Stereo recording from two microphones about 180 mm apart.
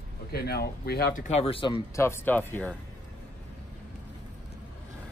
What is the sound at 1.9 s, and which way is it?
Speech, 15° left (ahead or behind).